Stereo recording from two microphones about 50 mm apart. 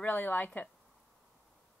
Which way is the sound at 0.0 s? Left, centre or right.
Left.